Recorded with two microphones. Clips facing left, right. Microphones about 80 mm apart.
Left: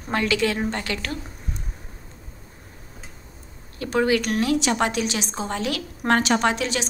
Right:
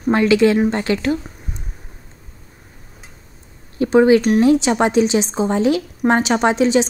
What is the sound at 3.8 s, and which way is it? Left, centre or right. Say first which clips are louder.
A woman's voice: right 9 dB; right.